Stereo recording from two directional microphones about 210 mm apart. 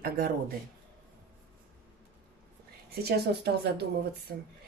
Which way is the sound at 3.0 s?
50° right (ahead or behind).